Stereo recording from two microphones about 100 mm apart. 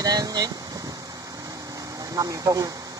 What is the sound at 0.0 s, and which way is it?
Speech, 40° right (ahead or behind).